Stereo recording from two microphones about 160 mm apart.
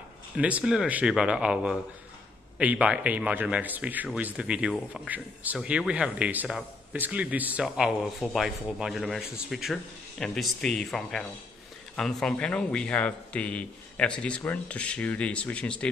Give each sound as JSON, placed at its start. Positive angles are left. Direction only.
{"t": 0.4, "sound": "a man's voice", "side_deg": -10}